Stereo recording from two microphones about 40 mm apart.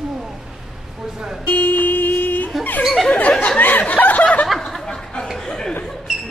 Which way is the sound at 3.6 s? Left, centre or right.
Left.